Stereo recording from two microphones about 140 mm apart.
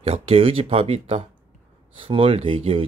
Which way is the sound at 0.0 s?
45° right (ahead or behind).